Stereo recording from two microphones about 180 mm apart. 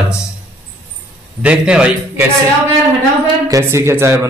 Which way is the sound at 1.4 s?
5° right (ahead or behind).